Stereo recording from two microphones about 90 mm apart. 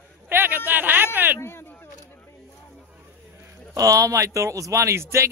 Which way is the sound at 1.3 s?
25° left (ahead or behind).